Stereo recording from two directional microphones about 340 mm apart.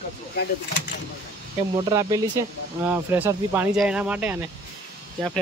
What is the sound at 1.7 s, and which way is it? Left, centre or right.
Speech, centre.